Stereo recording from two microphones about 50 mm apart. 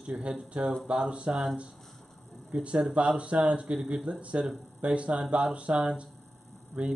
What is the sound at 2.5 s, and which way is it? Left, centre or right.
Speech, right.